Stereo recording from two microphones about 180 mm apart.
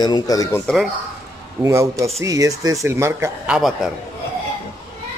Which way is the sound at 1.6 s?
15° right (ahead or behind).